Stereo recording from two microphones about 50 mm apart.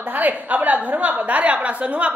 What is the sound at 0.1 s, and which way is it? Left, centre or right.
A woman's voice, right.